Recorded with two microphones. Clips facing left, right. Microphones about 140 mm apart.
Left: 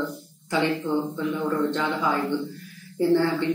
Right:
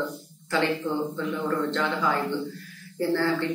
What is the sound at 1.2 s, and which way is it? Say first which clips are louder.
A man's voice: left 2 dB; 15° left (ahead or behind).